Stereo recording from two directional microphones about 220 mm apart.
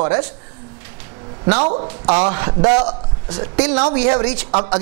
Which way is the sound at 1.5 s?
30° right (ahead or behind).